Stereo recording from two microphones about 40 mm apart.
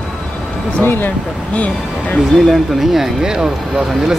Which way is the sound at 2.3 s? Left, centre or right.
Centre.